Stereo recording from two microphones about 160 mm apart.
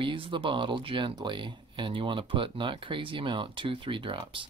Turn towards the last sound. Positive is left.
turn(degrees=-30)  # may be behind; listen again after turning